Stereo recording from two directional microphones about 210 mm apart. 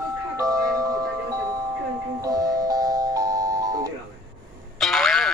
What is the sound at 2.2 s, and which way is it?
Music, 15° right (ahead or behind).